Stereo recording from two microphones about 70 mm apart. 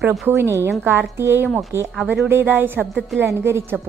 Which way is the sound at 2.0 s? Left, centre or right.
Centre.